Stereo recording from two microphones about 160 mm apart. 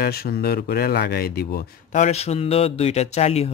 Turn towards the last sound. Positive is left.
turn(degrees=40)  # may be behind; listen again after turning